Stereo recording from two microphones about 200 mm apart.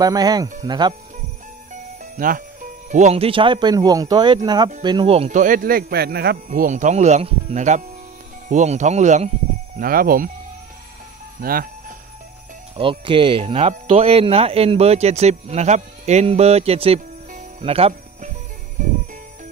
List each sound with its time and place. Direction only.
0.0 s speech: 20° right (ahead or behind)
1.7 s speech: 45° right (ahead or behind)
9.8 s speech: 45° right (ahead or behind)
11.4 s speech: 45° right (ahead or behind)
12.7 s speech: 25° right (ahead or behind)